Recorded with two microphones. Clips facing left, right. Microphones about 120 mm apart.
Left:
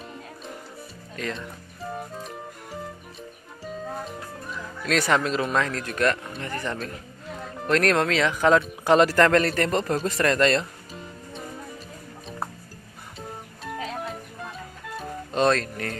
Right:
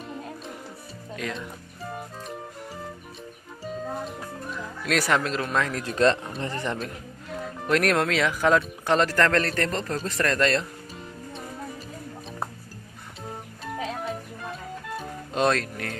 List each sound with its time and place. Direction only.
1.1 s speech: 5° right (ahead or behind)
4.0 s speech: centre (ahead or behind)
5.9 s speech: 25° right (ahead or behind)
7.6 s speech: 5° right (ahead or behind)
14.0 s music: centre (ahead or behind)